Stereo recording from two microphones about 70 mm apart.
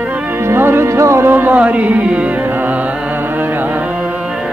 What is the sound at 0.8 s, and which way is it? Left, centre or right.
Music, right.